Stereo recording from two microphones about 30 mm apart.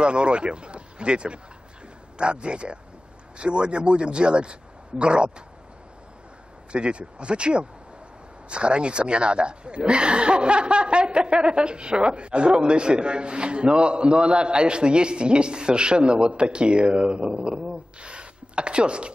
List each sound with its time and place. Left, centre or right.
0.0 s speech: right
6.7 s speech: right
18.0 s a sound: right